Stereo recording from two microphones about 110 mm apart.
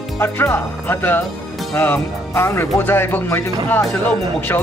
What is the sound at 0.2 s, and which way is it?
Music, 20° left (ahead or behind).